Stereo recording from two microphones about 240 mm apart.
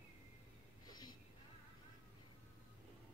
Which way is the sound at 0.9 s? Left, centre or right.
Centre.